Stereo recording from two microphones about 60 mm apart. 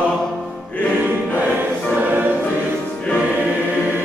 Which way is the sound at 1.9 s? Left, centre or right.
Right.